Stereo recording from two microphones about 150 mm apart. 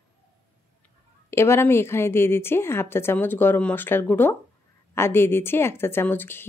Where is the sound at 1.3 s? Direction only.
15° left (ahead or behind).